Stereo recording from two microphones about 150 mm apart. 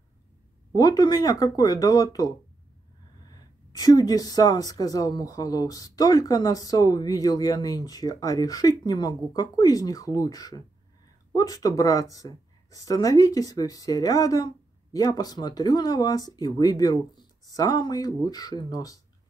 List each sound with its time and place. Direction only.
0.7 s speech: 25° left (ahead or behind)